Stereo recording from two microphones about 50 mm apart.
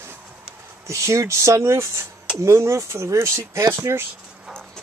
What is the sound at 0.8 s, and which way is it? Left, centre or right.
Speech, right.